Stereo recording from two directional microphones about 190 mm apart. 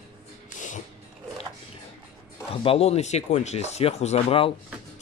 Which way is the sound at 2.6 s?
30° left (ahead or behind).